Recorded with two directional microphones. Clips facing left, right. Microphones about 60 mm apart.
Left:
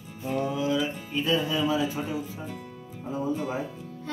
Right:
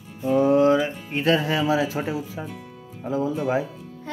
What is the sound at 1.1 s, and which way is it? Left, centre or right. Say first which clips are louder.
Speech: right 5 dB; right.